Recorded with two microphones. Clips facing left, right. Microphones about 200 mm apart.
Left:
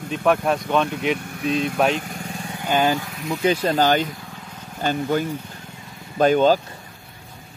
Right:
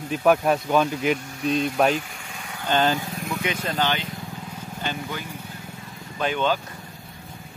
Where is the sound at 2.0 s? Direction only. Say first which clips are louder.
Left 4 dB; 40° left (ahead or behind).